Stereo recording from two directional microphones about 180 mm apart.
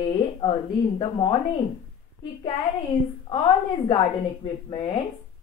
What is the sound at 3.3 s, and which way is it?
A woman's voice, 30° left (ahead or behind).